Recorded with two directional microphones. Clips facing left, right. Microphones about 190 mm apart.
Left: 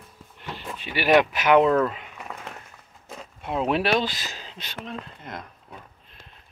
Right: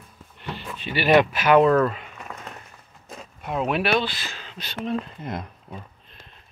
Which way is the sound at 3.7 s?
35° left (ahead or behind).